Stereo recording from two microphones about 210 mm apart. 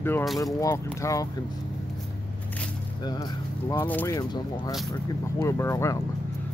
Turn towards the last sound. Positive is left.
turn(degrees=15)  # may be behind; listen again after turning